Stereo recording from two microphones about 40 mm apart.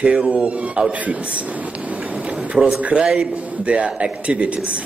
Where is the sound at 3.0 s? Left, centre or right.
Centre.